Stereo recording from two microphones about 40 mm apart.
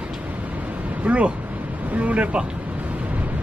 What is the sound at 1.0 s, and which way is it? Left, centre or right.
Speech, right.